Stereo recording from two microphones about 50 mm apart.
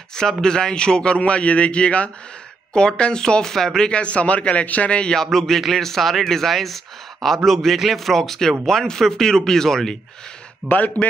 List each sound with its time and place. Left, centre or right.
0.1 s speech: centre
10.7 s a man's voice: left